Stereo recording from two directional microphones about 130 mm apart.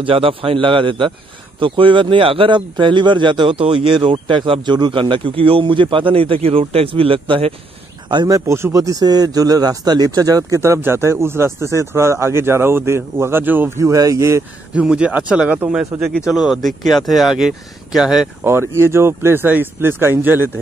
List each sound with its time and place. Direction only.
0.0 s a man's voice: 45° right (ahead or behind)
8.1 s a man's voice: 30° right (ahead or behind)
14.7 s speech: 10° right (ahead or behind)
18.4 s speech: 20° right (ahead or behind)